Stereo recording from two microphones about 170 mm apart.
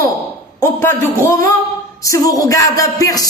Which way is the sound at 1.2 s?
20° left (ahead or behind).